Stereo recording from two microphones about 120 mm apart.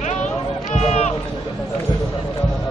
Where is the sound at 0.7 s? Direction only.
65° left (ahead or behind).